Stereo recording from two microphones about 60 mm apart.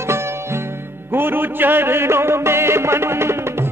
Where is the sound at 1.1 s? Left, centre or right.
Right.